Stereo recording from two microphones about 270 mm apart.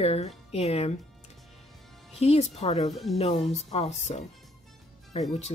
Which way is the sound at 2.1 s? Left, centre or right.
Left.